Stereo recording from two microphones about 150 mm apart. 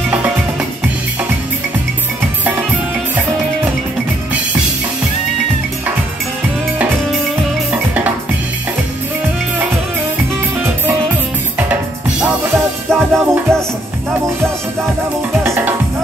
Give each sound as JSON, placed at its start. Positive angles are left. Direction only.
{"t": 11.5, "sound": "drum", "side_deg": -10}
{"t": 12.5, "sound": "music", "side_deg": 0}
{"t": 15.4, "sound": "music", "side_deg": -15}